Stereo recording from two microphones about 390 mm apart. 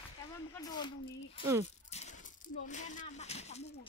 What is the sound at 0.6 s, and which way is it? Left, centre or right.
Speech, centre.